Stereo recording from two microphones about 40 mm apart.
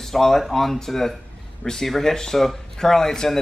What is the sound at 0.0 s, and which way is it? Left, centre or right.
Speech, centre.